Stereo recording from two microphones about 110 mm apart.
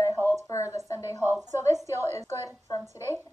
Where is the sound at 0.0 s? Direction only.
25° left (ahead or behind).